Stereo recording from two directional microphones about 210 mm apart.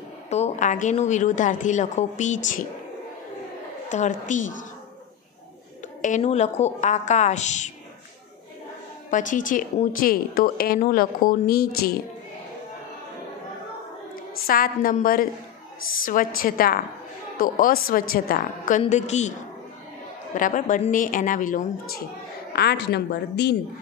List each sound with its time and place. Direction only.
0.3 s a woman's voice: 35° left (ahead or behind)
3.9 s a woman's voice: 35° left (ahead or behind)
6.0 s a woman's voice: 35° left (ahead or behind)
9.1 s a woman's voice: 40° left (ahead or behind)
14.1 s a woman's voice: 45° left (ahead or behind)
16.3 s a woman's voice: 45° left (ahead or behind)
18.8 s a woman's voice: 35° left (ahead or behind)
20.3 s a woman's voice: 40° left (ahead or behind)
22.5 s a woman's voice: 50° left (ahead or behind)